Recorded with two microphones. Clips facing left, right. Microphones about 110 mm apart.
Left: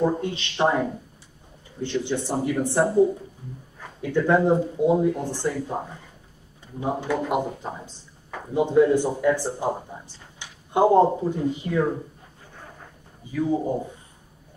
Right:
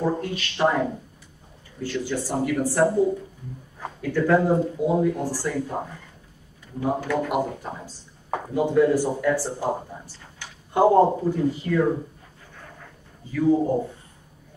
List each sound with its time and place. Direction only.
0.0 s speech: 20° left (ahead or behind)
4.0 s speech: 20° left (ahead or behind)
6.8 s speech: 20° left (ahead or behind)
8.9 s speech: 20° left (ahead or behind)
13.2 s a man's voice: 15° left (ahead or behind)